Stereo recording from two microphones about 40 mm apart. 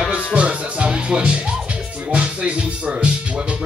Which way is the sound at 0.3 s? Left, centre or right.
Right.